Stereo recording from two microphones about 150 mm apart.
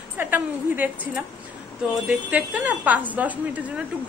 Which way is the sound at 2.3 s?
10° right (ahead or behind).